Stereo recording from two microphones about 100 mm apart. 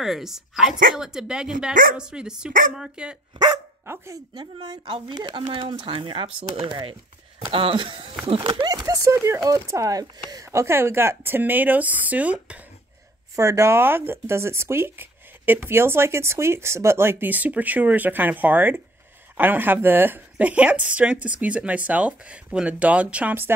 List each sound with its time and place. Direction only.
0.0 s a woman's voice: 5° right (ahead or behind)
3.8 s speech: 25° right (ahead or behind)
4.4 s speech: 50° right (ahead or behind)
8.5 s speech: 50° right (ahead or behind)
8.8 s speech: 30° right (ahead or behind); by 12.6 s 15° right (ahead or behind)
13.4 s a woman's voice: 30° right (ahead or behind)